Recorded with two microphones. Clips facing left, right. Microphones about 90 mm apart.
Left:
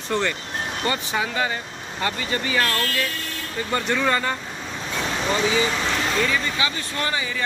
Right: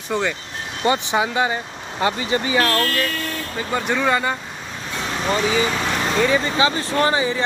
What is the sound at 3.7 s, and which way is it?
Speech, 10° right (ahead or behind).